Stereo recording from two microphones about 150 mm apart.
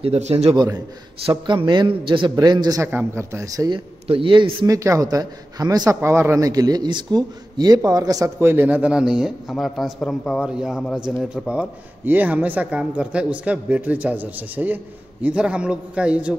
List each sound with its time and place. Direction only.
0.0 s a man's voice: 40° right (ahead or behind)
0.6 s a man's voice: 25° right (ahead or behind)
2.9 s a man's voice: 15° right (ahead or behind); by 4.6 s 35° right (ahead or behind)
4.6 s a man's voice: 20° right (ahead or behind)